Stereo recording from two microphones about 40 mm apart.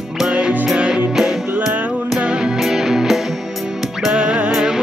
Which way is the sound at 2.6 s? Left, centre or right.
Centre.